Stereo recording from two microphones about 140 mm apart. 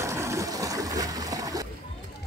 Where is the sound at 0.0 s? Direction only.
20° right (ahead or behind).